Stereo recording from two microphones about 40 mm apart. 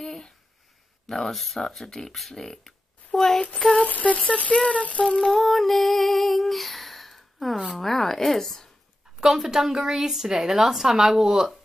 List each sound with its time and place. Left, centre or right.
0.0 s a sound: centre
1.0 s speech: centre
4.0 s humming: left
5.2 s female singing: centre
9.2 s a woman's voice: centre